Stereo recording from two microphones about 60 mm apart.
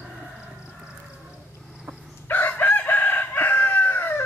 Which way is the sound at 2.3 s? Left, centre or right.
Left.